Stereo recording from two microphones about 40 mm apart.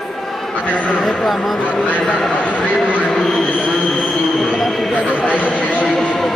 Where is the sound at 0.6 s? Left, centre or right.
Left.